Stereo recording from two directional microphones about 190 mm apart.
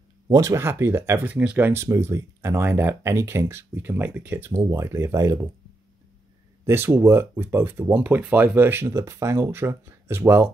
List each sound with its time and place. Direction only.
0.3 s speech: 15° right (ahead or behind)
6.6 s speech: 10° right (ahead or behind)